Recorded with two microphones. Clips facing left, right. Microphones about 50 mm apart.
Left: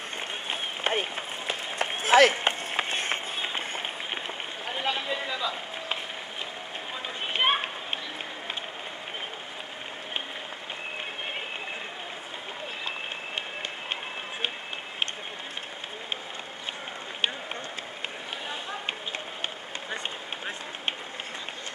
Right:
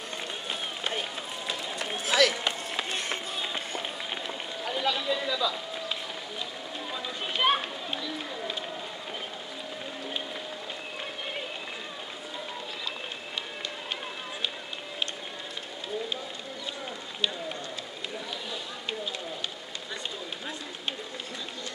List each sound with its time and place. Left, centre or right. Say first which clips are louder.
0.5 s run: left 5 dB; left
7.3 s children playing: even; left